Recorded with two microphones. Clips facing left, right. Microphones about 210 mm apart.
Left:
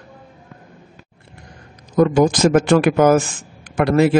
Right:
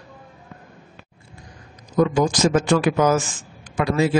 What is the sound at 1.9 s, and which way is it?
A man's voice, 55° left (ahead or behind).